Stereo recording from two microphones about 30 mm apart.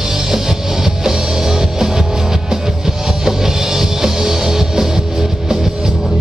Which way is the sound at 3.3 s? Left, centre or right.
Centre.